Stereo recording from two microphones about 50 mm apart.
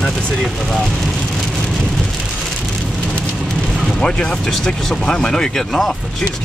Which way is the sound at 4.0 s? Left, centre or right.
Centre.